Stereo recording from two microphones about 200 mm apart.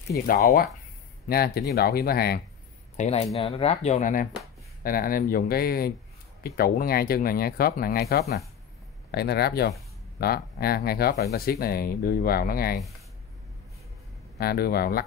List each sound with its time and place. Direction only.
0.3 s speech: 45° left (ahead or behind)
3.0 s speech: 30° left (ahead or behind); by 12.8 s 50° left (ahead or behind)
14.4 s speech: 50° left (ahead or behind)